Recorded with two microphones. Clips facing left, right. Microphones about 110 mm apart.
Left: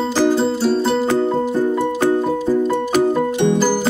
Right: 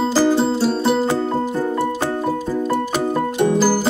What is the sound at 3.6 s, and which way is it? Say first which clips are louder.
Music: even; 5° right (ahead or behind).